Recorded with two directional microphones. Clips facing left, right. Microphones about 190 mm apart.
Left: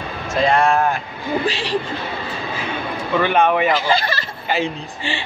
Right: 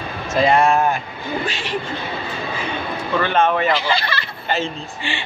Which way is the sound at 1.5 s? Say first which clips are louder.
Left 4 dB; 35° left (ahead or behind).